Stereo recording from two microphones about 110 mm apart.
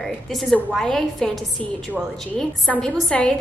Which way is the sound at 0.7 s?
5° left (ahead or behind).